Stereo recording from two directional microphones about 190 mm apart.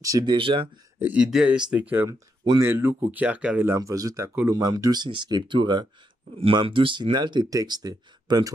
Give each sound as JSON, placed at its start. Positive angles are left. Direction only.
{"t": 0.0, "sound": "speech", "side_deg": -20}
{"t": 0.9, "sound": "speech", "side_deg": -10}